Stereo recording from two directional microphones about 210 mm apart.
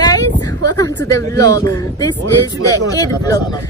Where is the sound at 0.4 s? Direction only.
15° left (ahead or behind).